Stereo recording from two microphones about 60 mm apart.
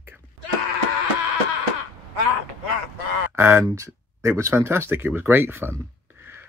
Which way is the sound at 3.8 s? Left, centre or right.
Right.